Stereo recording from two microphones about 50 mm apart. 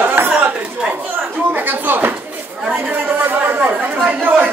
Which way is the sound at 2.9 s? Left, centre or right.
Right.